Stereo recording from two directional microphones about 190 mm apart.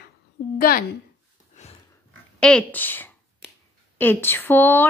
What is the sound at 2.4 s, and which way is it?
Speech, 5° left (ahead or behind).